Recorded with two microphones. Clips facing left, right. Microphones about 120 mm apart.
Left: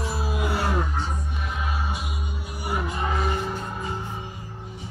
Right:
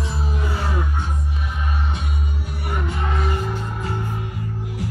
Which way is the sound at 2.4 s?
5° left (ahead or behind).